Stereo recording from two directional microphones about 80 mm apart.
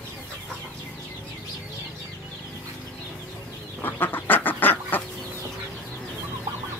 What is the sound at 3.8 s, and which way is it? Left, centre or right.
Chicken, left.